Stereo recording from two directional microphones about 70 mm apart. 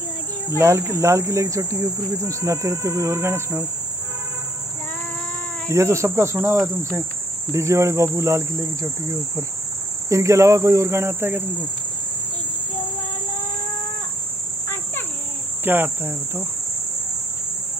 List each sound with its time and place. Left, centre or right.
0.6 s speech: right
5.7 s speech: right
15.6 s cricket: right